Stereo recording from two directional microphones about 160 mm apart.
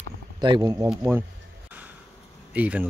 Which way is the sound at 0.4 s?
25° right (ahead or behind).